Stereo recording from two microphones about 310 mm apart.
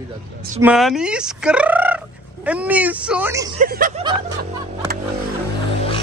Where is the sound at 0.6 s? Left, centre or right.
Centre.